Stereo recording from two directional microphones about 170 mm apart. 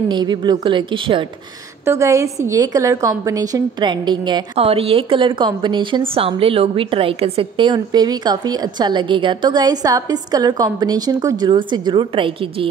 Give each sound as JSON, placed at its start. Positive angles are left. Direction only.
{"t": 0.1, "sound": "a woman's voice", "side_deg": -25}
{"t": 1.9, "sound": "a woman's voice", "side_deg": -15}